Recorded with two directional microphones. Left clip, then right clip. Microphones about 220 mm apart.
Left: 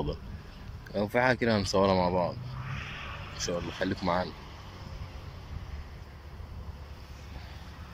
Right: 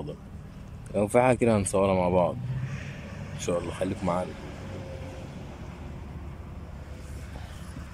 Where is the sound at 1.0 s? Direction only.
10° right (ahead or behind).